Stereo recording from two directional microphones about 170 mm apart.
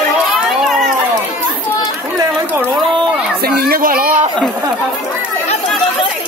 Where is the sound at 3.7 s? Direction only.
60° right (ahead or behind).